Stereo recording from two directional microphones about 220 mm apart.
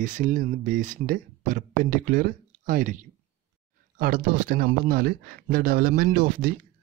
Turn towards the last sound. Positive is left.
turn(degrees=-40)  # may be behind; listen again after turning